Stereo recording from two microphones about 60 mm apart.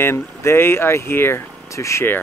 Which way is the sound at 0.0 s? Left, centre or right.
Left.